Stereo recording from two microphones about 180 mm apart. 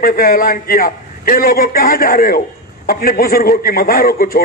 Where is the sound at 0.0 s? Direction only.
55° left (ahead or behind).